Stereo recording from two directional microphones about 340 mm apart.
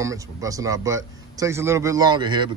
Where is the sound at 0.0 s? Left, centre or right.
Centre.